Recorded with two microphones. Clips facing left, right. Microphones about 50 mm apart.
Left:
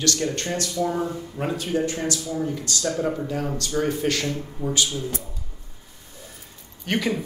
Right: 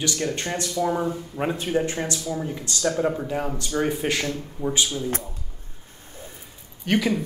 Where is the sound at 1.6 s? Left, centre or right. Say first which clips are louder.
Left 1 dB; right.